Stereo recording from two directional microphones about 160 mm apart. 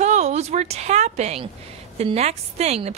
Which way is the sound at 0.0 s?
45° right (ahead or behind).